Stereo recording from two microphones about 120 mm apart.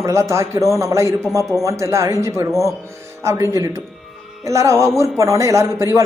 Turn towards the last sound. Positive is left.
turn(degrees=-25)  # may be behind; listen again after turning